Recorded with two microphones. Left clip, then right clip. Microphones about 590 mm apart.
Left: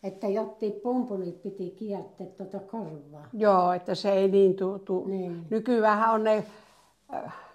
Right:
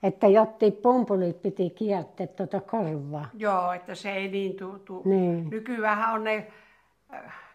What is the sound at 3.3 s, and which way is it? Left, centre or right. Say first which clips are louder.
Speech: left 4 dB; left.